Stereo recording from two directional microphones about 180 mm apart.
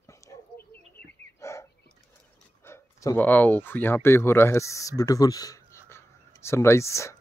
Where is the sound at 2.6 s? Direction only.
15° left (ahead or behind).